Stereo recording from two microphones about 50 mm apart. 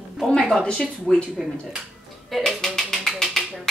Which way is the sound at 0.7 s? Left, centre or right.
Centre.